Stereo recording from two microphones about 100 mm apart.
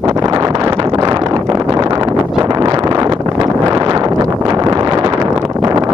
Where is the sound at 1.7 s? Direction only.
45° right (ahead or behind).